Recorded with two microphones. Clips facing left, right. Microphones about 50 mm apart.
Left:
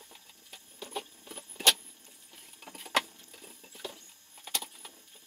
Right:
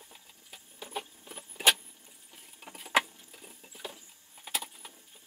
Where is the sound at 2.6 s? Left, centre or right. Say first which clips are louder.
Right 3 dB; centre.